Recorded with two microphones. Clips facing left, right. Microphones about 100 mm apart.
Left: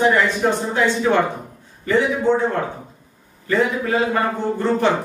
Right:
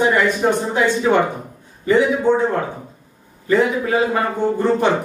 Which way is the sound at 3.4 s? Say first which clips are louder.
Right 3 dB; 15° right (ahead or behind).